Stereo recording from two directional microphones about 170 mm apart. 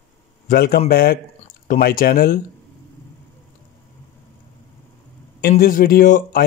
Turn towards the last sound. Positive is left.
turn(degrees=55)  # may be behind; listen again after turning